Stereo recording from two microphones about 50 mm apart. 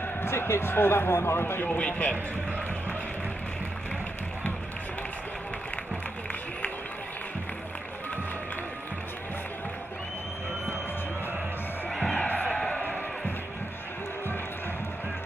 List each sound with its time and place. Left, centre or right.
0.2 s a man's voice: left
1.8 s a man's voice: left
12.0 s music: centre